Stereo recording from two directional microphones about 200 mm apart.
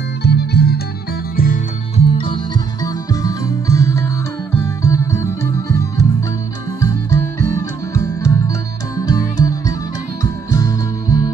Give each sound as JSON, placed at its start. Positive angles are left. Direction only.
{"t": 0.2, "sound": "music", "side_deg": 55}
{"t": 2.0, "sound": "music", "side_deg": 25}